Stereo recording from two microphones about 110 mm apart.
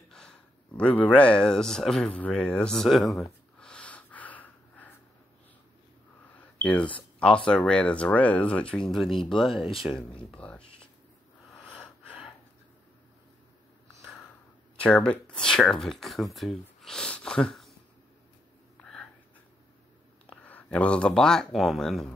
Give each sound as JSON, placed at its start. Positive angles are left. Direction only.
{"t": 0.1, "sound": "speech", "side_deg": 5}
{"t": 3.5, "sound": "snort", "side_deg": 10}
{"t": 6.6, "sound": "speech", "side_deg": 10}
{"t": 9.6, "sound": "speech", "side_deg": 55}
{"t": 10.3, "sound": "speech", "side_deg": 10}
{"t": 14.8, "sound": "speech", "side_deg": 10}
{"t": 18.8, "sound": "a sound", "side_deg": 10}
{"t": 20.4, "sound": "speech", "side_deg": 15}